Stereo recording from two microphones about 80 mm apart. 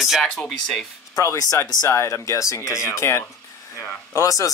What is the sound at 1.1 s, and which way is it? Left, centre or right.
Speech, left.